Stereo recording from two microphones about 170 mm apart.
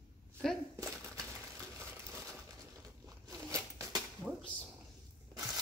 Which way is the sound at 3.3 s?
20° right (ahead or behind).